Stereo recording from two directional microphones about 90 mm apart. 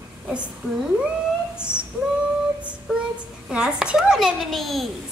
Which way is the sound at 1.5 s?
25° left (ahead or behind).